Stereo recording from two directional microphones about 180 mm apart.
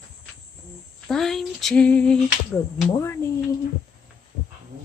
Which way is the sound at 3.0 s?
15° left (ahead or behind).